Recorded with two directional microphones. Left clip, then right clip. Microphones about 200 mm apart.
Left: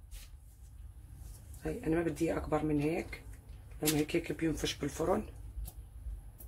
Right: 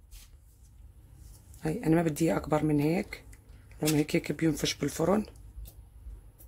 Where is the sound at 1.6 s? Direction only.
55° right (ahead or behind).